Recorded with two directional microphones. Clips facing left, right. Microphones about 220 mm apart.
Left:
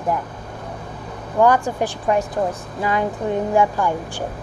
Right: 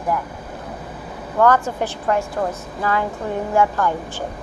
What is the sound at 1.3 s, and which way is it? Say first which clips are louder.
Speech: left 1 dB; 15° left (ahead or behind).